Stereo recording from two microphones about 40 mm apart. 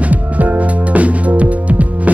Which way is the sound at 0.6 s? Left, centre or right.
Right.